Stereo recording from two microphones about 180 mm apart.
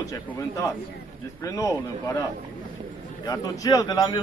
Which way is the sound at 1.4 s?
15° left (ahead or behind).